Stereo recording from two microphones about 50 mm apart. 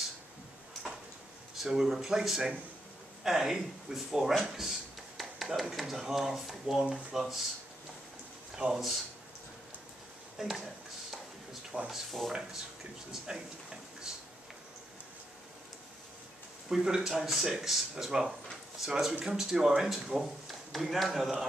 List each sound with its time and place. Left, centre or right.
1.6 s speech: centre
8.5 s speech: centre
10.3 s a sound: centre
11.9 s speech: centre
16.6 s speech: centre